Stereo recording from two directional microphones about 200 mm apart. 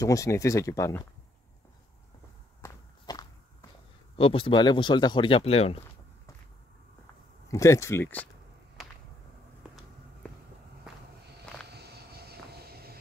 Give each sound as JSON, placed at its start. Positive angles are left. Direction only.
{"t": 0.0, "sound": "speech", "side_deg": 15}
{"t": 2.6, "sound": "walk", "side_deg": 15}
{"t": 4.2, "sound": "speech", "side_deg": 25}
{"t": 7.4, "sound": "speech", "side_deg": 15}
{"t": 11.7, "sound": "vehicle", "side_deg": -55}